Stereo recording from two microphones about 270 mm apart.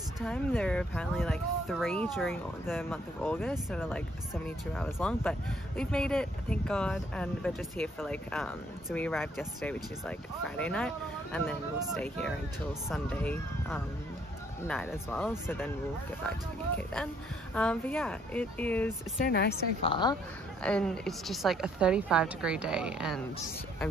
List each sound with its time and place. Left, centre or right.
0.2 s speech: centre
19.2 s a woman's voice: left
19.8 s speech: centre
20.6 s speech: centre